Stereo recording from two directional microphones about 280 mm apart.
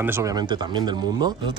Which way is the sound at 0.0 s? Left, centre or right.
Centre.